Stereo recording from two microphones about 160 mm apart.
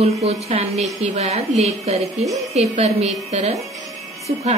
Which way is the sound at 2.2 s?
Centre (ahead or behind).